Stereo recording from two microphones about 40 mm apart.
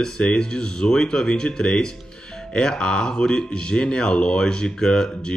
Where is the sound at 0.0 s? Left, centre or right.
Left.